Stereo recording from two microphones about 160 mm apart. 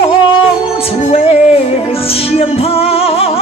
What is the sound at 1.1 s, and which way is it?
Music, 40° left (ahead or behind).